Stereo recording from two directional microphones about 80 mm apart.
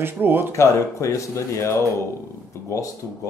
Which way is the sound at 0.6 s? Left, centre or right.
Left.